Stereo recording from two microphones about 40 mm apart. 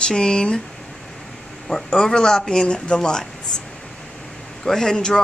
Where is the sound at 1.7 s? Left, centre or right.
Centre.